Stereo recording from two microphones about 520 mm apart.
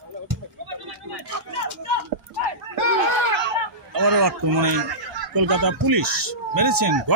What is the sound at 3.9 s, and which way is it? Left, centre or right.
Fowl, right.